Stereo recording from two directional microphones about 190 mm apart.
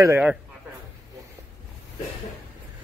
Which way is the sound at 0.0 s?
10° right (ahead or behind).